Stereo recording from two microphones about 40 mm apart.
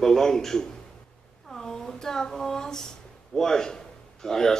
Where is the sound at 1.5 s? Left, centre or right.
Centre.